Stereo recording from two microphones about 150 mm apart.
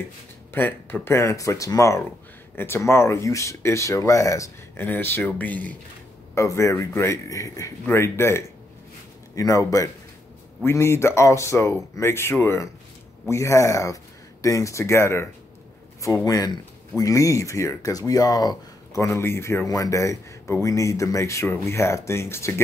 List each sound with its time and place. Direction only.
0.5 s speech: 15° left (ahead or behind)